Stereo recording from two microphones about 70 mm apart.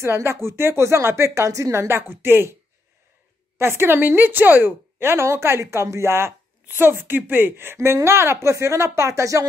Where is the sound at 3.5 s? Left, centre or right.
Right.